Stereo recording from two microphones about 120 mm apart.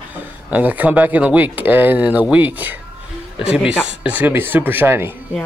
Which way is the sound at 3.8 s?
10° right (ahead or behind).